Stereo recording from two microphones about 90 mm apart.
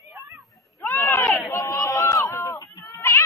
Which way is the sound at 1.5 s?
40° left (ahead or behind).